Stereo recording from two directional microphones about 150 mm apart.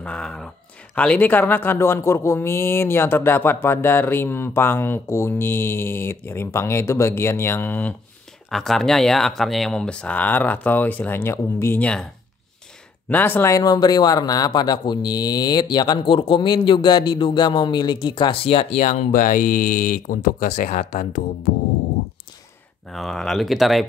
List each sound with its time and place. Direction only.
0.0 s a sound: 5° left (ahead or behind)
0.9 s speech: 10° left (ahead or behind)
8.5 s speech: centre (ahead or behind)
13.1 s speech: 10° left (ahead or behind); by 21.2 s 55° left (ahead or behind)
22.8 s speech: 5° left (ahead or behind)